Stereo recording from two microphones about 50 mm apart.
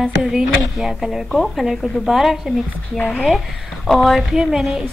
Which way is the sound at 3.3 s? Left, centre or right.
Centre.